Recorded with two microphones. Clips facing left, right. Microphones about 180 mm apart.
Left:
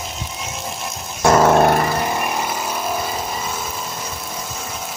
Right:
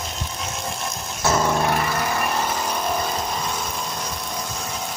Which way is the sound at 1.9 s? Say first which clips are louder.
Left 2 dB; 20° left (ahead or behind).